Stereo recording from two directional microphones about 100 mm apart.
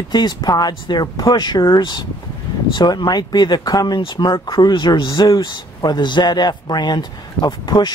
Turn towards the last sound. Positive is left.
turn(degrees=45)  # may be behind; listen again after turning